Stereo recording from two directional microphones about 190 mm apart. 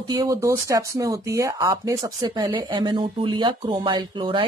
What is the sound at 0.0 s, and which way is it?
Speech, 20° right (ahead or behind).